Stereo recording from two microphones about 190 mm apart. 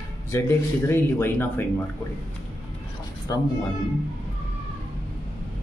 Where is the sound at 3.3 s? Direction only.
20° left (ahead or behind).